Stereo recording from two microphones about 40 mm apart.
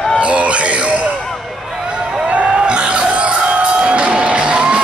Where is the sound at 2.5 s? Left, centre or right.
Right.